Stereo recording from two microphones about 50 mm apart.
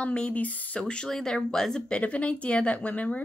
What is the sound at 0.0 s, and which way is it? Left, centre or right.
Speech, left.